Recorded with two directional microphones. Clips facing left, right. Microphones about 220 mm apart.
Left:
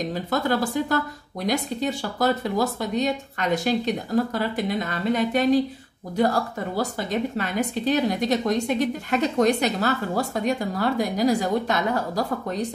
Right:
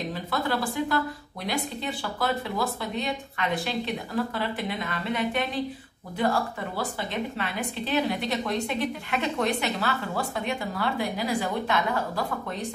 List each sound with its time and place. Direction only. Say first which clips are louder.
0.1 s a woman's voice: left 5 dB; 40° left (ahead or behind)